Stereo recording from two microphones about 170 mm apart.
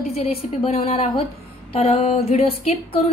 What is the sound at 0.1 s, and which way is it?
A woman's voice, 35° left (ahead or behind).